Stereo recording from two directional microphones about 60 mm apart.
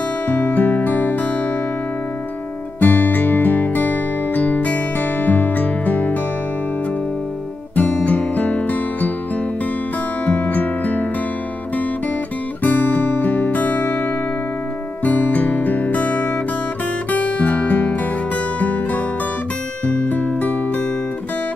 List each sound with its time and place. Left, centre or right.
0.3 s music: left
2.8 s music: left
7.7 s music: left
10.2 s music: left
12.6 s guitar: left
15.0 s music: left